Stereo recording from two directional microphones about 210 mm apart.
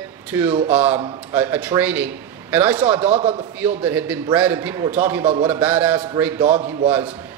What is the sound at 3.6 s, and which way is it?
A man's voice, 10° right (ahead or behind).